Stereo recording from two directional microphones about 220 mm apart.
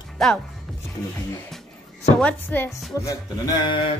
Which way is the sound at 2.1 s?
5° left (ahead or behind).